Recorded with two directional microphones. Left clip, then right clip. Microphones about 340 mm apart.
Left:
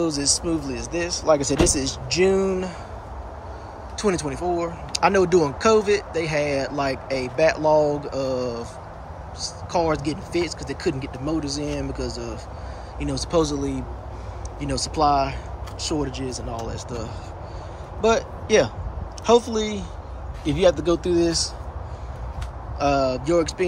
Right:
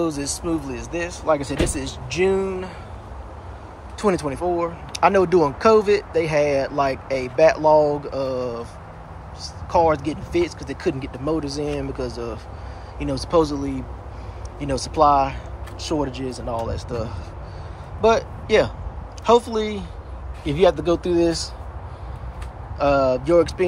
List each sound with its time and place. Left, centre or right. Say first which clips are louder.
0.7 s speech: left 1 dB; centre
1.9 s speech: left 2 dB; left
2.2 s speech: even; centre
4.0 s speech: right 2 dB; centre
9.7 s speech: right 5 dB; centre
12.0 s speech: right 2 dB; right
13.0 s speech: right 3 dB; centre
22.8 s speech: right 3 dB; centre